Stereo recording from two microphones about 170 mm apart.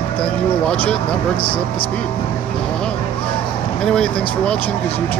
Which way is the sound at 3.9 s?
5° left (ahead or behind).